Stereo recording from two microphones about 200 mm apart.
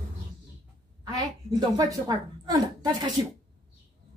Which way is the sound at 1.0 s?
20° right (ahead or behind).